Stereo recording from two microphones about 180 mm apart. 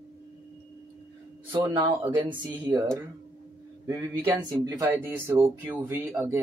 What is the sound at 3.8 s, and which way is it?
Speech, 20° right (ahead or behind).